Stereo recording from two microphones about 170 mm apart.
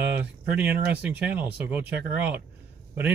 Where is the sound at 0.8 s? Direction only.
10° right (ahead or behind).